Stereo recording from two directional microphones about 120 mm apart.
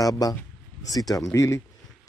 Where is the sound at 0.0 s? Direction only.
30° left (ahead or behind).